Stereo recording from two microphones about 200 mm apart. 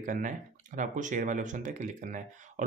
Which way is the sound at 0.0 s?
40° right (ahead or behind).